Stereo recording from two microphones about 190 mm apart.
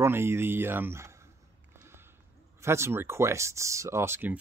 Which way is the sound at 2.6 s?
15° right (ahead or behind).